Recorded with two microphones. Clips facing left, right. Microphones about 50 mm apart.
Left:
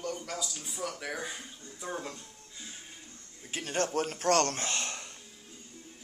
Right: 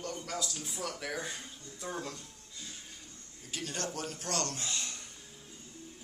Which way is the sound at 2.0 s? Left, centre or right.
Left.